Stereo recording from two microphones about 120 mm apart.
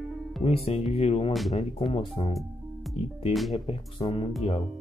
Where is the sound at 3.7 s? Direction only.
50° left (ahead or behind).